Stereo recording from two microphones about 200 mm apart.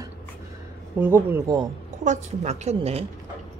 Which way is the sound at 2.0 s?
35° right (ahead or behind).